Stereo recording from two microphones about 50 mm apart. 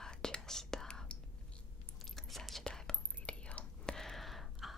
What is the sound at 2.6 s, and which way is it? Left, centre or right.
Whispering, centre.